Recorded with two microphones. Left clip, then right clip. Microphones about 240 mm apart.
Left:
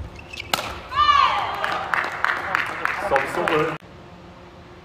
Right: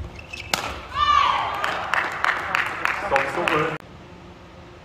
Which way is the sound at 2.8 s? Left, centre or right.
Right.